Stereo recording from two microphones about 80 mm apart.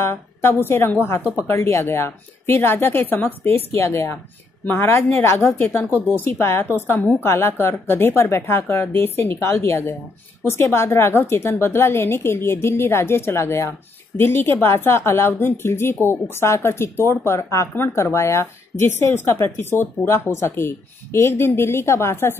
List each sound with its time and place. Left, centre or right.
0.0 s a woman's voice: left